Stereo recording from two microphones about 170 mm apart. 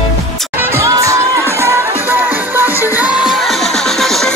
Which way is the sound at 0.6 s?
15° right (ahead or behind).